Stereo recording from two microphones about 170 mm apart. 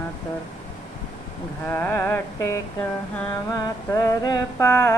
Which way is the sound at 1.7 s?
15° left (ahead or behind).